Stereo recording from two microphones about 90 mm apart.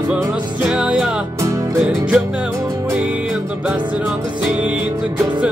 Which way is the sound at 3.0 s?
15° right (ahead or behind).